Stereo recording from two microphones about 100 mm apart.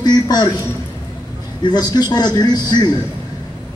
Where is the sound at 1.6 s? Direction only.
45° left (ahead or behind).